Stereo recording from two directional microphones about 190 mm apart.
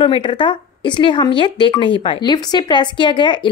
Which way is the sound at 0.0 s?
25° left (ahead or behind).